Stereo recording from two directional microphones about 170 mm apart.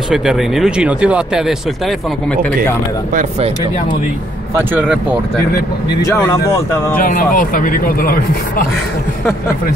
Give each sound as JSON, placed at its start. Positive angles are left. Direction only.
{"t": 0.1, "sound": "speech", "side_deg": -5}
{"t": 3.2, "sound": "speech", "side_deg": -40}
{"t": 6.0, "sound": "speech", "side_deg": 15}
{"t": 7.0, "sound": "speech", "side_deg": 55}